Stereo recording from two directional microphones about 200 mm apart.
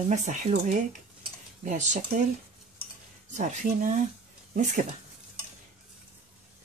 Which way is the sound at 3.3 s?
35° right (ahead or behind).